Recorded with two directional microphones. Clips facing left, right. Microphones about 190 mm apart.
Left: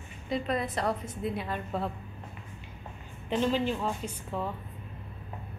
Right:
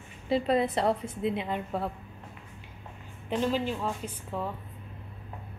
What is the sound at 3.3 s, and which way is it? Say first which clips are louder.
Speech: left 1 dB; 5° right (ahead or behind).